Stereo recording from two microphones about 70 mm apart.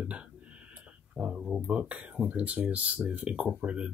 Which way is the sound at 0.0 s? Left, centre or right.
Centre.